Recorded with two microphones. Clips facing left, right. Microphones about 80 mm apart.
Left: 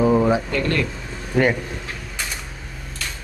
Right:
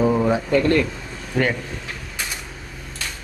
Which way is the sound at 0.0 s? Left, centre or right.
Centre.